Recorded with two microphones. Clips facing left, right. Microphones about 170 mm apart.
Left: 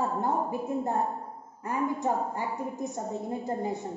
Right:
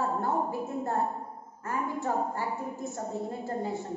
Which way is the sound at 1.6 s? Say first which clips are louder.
Left 3 dB; 15° left (ahead or behind).